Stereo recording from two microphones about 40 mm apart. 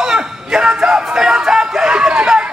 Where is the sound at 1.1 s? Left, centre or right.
Centre.